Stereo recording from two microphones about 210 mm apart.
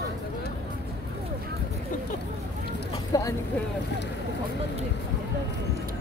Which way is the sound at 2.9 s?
15° left (ahead or behind).